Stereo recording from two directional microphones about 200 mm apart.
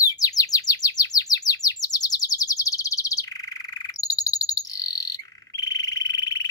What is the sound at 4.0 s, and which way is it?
Frog, 20° left (ahead or behind).